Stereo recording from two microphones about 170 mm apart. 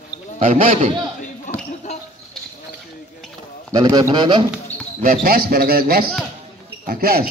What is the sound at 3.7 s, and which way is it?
Speech, 25° right (ahead or behind).